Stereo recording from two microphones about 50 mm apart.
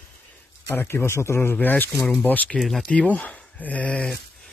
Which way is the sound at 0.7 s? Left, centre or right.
Left.